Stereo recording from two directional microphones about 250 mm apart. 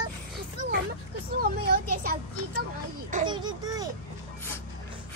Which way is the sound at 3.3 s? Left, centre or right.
Centre.